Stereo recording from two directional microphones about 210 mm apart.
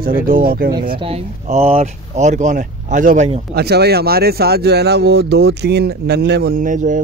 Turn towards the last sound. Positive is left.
turn(degrees=-40)  # may be behind; listen again after turning